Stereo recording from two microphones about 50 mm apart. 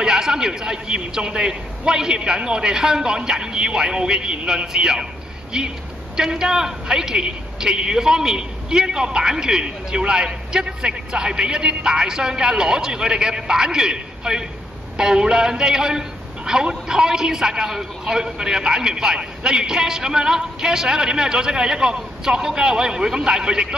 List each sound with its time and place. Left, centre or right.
0.0 s a man's voice: centre
6.1 s a man's voice: centre